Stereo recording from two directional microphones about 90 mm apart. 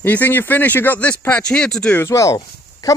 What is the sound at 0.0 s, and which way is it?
Speech, 20° left (ahead or behind).